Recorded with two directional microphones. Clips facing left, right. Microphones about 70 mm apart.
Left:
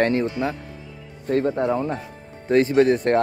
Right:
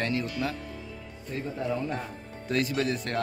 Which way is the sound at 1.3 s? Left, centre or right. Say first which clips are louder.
Left 12 dB; left.